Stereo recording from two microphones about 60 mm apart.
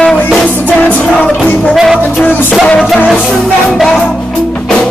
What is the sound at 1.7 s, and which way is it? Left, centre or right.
Music, centre.